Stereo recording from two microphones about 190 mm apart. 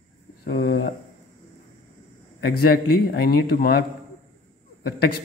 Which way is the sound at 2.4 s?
55° left (ahead or behind).